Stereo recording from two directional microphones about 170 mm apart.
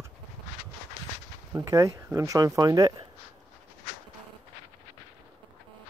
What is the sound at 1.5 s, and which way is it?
Speech, 20° right (ahead or behind).